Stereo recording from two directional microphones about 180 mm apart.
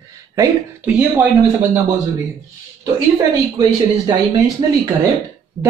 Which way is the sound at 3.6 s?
25° right (ahead or behind).